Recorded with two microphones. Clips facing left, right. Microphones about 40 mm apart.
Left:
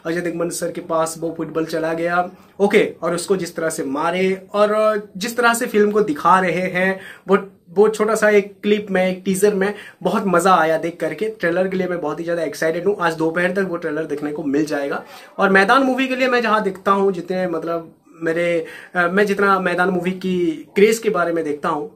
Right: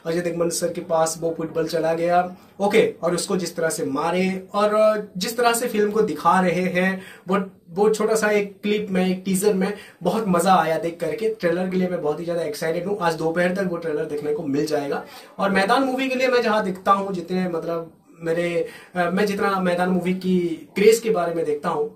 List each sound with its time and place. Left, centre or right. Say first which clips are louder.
0.0 s speech: left 1 dB; left
12.0 s speech: left 2 dB; left
14.0 s speech: left 1 dB; left
16.1 s speech: left 2 dB; left
20.7 s speech: left 1 dB; left
21.2 s speech: left 3 dB; left